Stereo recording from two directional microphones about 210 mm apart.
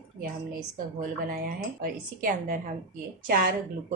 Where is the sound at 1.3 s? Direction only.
40° right (ahead or behind).